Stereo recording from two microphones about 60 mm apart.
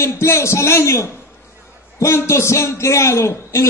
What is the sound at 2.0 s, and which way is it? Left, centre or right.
A man's voice, left.